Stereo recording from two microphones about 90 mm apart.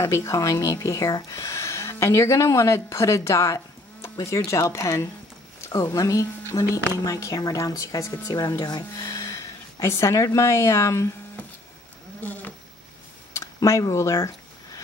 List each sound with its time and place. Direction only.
0.0 s a woman's voice: 30° left (ahead or behind)
12.2 s a sound: 20° left (ahead or behind)
13.3 s speech: 35° left (ahead or behind)